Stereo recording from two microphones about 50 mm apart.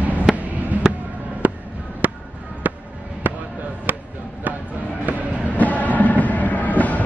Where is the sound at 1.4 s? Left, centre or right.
Right.